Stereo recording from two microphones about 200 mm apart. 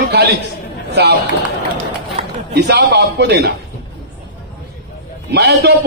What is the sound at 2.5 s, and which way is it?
Speech, 55° right (ahead or behind).